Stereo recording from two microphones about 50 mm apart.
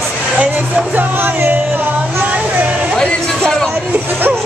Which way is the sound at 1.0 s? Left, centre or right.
Right.